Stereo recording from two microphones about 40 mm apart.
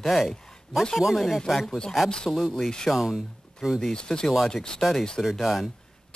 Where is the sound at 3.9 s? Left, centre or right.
Centre.